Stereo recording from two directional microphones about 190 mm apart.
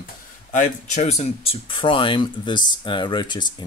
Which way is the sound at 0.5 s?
40° left (ahead or behind).